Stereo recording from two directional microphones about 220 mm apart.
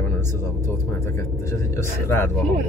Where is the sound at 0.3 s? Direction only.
10° left (ahead or behind).